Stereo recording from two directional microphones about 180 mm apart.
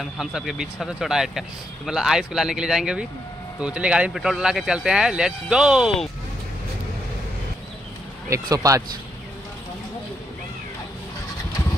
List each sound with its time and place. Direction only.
0.0 s speech: 5° right (ahead or behind)
8.3 s speech: 20° right (ahead or behind)